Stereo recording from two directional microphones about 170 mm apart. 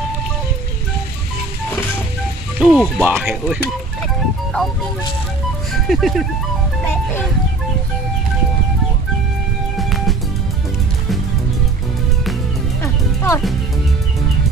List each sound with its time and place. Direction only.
2.6 s speech: 5° right (ahead or behind)
5.7 s speech: centre (ahead or behind)
9.8 s music: centre (ahead or behind)
12.8 s music: 15° left (ahead or behind)